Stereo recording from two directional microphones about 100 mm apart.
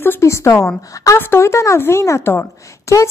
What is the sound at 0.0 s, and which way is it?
A woman's voice, 25° left (ahead or behind).